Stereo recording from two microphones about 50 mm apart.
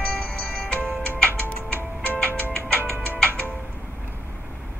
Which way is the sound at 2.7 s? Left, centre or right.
Right.